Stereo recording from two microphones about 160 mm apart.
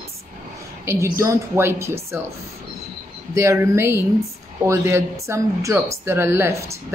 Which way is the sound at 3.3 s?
15° right (ahead or behind).